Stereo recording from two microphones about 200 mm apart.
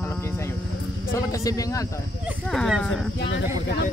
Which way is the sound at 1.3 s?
15° left (ahead or behind).